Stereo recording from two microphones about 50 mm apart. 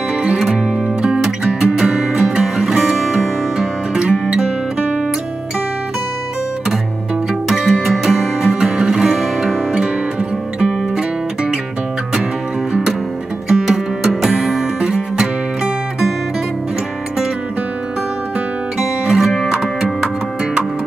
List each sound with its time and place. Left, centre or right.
0.1 s music: centre
4.0 s music: right
7.4 s music: centre
10.6 s music: centre
13.5 s music: centre
19.0 s music: centre
19.6 s music: centre